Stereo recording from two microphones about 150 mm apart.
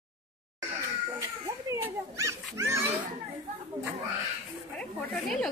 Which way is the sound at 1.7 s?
20° right (ahead or behind).